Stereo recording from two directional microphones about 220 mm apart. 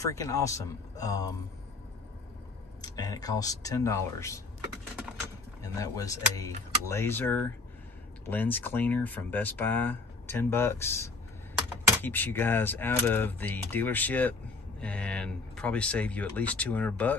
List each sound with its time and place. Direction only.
0.0 s speech: 15° left (ahead or behind)
2.8 s speech: 15° left (ahead or behind)
5.6 s speech: 15° left (ahead or behind)
12.0 s speech: 10° left (ahead or behind)